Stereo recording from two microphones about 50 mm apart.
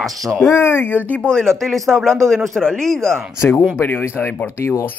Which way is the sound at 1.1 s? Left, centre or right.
Centre.